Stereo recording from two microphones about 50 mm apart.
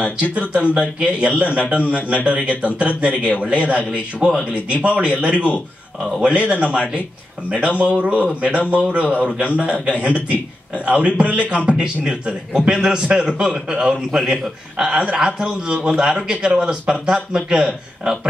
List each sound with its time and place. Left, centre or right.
0.2 s a man's voice: right